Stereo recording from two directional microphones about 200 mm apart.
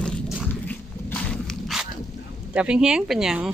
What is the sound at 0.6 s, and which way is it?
Dog, 5° left (ahead or behind).